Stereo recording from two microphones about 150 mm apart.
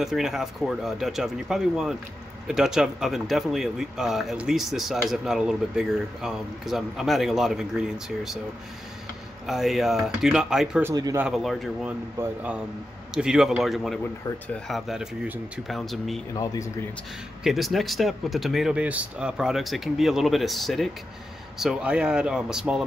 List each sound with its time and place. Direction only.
0.0 s speech: 5° right (ahead or behind)
9.5 s speech: centre (ahead or behind)
10.8 s speech: 20° right (ahead or behind)
11.1 s speech: 5° right (ahead or behind)
15.7 s speech: centre (ahead or behind)
16.3 s speech: 20° left (ahead or behind)
17.4 s speech: centre (ahead or behind)